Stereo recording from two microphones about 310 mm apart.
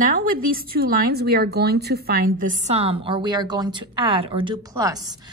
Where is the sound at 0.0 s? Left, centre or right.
Right.